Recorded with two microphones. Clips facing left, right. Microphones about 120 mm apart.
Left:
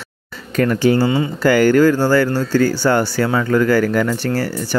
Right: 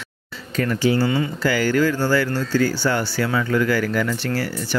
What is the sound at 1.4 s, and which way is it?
Speech, 50° left (ahead or behind).